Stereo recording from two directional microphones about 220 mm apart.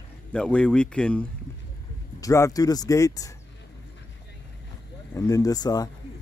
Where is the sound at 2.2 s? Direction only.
15° left (ahead or behind).